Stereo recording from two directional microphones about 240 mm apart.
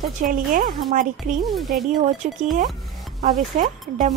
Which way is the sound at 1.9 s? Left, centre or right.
Right.